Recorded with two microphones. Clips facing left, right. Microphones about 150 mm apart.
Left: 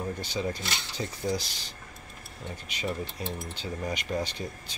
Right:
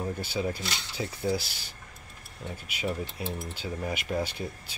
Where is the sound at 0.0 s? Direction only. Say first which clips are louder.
Right 1 dB; 10° right (ahead or behind).